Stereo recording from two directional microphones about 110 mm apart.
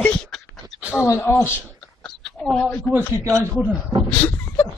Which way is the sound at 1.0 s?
25° left (ahead or behind).